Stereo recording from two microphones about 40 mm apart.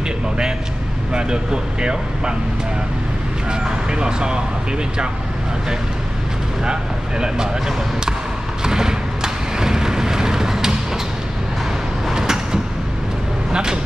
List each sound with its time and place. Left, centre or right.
1.1 s speech: right
3.4 s speech: right
6.6 s speech: centre
8.6 s a sound: centre
12.1 s vehicle: centre
13.5 s speech: centre